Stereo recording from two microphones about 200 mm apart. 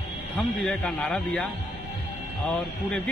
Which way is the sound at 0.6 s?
5° left (ahead or behind).